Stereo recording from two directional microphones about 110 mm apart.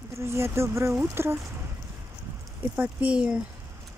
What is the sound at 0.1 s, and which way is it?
Speech, 25° right (ahead or behind).